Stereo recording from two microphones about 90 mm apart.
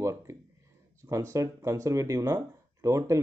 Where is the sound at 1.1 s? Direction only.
35° right (ahead or behind).